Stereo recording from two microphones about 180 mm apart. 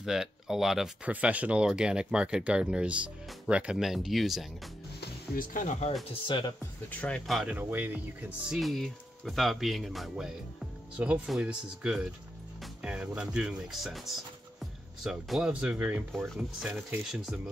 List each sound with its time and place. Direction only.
0.0 s speech: 5° right (ahead or behind)
5.0 s speech: 50° left (ahead or behind)
6.2 s speech: 25° left (ahead or behind)
6.6 s speech: 10° left (ahead or behind)